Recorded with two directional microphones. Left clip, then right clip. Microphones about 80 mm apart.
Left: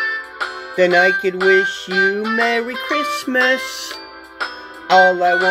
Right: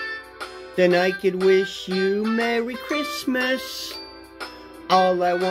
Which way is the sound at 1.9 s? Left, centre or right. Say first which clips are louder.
Left 9 dB; right.